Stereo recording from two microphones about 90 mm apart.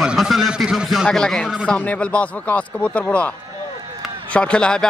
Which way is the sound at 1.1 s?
5° left (ahead or behind).